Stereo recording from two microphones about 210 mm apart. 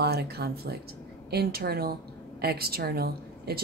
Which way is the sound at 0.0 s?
50° right (ahead or behind).